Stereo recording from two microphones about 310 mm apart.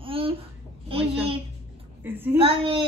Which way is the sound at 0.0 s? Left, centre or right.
Centre.